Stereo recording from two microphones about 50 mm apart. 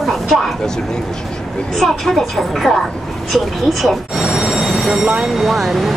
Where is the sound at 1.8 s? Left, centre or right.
Centre.